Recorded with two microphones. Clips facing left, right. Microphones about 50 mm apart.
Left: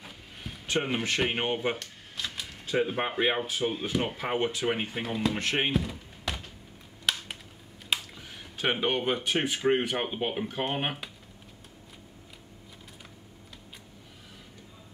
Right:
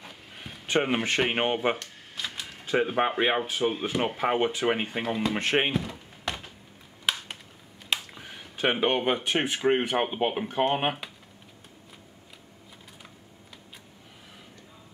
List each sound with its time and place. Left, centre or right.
0.4 s a sound: centre
1.3 s speech: centre
1.8 s speech: centre
5.3 s speech: centre
5.7 s thunk: centre
7.1 s a sound: centre
8.1 s speech: centre